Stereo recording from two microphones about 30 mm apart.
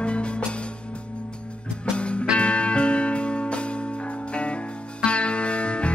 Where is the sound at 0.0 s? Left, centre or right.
Left.